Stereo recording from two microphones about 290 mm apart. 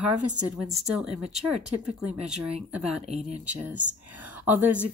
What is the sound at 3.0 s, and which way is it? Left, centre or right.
Speech, right.